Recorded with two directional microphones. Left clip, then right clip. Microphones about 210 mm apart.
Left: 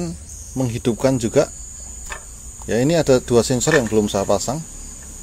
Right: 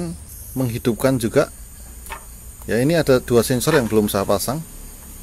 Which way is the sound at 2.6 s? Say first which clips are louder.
Left 1 dB; centre (ahead or behind).